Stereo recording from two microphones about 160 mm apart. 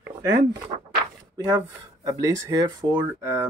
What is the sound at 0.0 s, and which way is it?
Speech, 15° right (ahead or behind).